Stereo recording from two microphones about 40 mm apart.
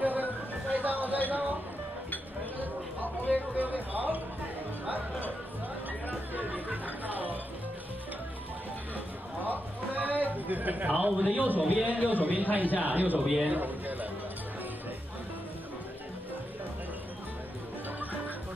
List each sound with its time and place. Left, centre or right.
0.0 s music: right
2.6 s a sound: right
3.5 s music: right
6.3 s chatter: right
8.9 s a sound: right
10.3 s a man's voice: right
13.2 s a man's voice: centre
13.5 s a man's voice: right